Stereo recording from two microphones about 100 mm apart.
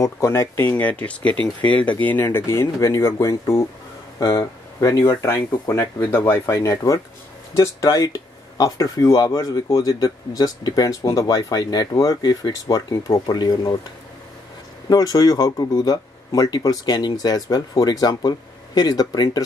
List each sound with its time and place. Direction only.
0.0 s speech: 30° left (ahead or behind)
0.7 s speech: 15° left (ahead or behind); by 19.4 s 40° left (ahead or behind)